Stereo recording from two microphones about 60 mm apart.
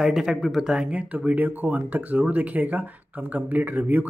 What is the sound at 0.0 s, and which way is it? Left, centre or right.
Speech, centre.